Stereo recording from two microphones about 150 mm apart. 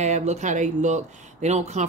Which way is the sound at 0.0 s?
50° right (ahead or behind).